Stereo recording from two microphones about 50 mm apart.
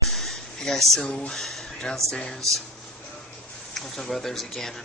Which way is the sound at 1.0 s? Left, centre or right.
Centre.